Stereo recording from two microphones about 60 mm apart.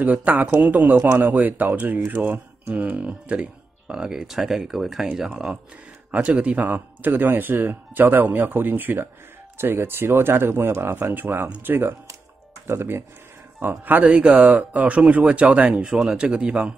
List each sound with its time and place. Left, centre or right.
0.0 s speech: right; by 5.0 s centre
6.1 s speech: right
13.6 s speech: right
15.8 s speech: centre